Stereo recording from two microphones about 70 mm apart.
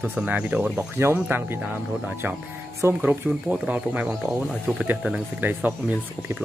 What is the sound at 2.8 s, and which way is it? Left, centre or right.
Speech, right.